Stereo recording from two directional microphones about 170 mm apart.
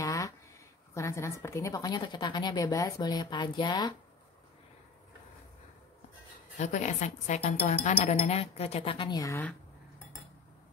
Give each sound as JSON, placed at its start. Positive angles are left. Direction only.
{"t": 0.0, "sound": "a sound", "side_deg": 20}
{"t": 0.9, "sound": "a woman's voice", "side_deg": 15}
{"t": 6.6, "sound": "speech", "side_deg": 45}